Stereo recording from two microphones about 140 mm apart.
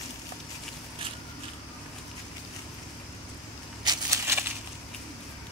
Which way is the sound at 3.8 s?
25° right (ahead or behind).